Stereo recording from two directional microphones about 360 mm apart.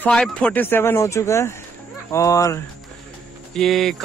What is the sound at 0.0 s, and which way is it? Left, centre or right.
A woman's voice, centre.